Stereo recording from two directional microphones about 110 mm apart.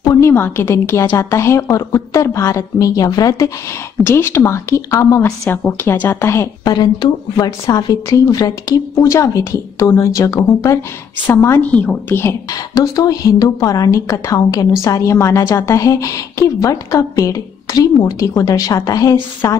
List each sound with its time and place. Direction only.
0.0 s a sound: 35° left (ahead or behind)
0.3 s a woman's voice: 20° left (ahead or behind)
4.0 s a woman's voice: 25° left (ahead or behind)
5.5 s a woman's voice: 15° left (ahead or behind)
6.6 s a woman's voice: 40° left (ahead or behind); by 12.4 s 20° left (ahead or behind)
12.7 s a woman's voice: 35° left (ahead or behind)